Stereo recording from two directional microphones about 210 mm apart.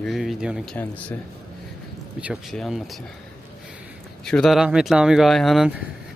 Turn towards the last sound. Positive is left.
turn(degrees=-5)  # may be behind; listen again after turning